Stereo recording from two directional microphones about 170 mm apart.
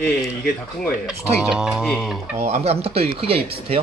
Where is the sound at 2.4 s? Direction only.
40° right (ahead or behind).